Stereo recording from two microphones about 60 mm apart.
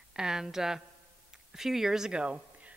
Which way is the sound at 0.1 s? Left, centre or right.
Centre.